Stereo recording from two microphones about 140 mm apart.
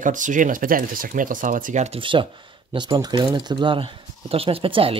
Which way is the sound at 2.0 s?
35° right (ahead or behind).